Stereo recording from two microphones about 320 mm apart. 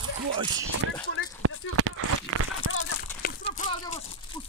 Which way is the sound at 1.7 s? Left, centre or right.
Right.